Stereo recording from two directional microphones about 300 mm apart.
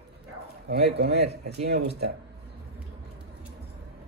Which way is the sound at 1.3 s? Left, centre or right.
Right.